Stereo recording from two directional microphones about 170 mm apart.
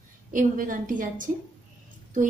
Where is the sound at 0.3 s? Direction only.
50° right (ahead or behind).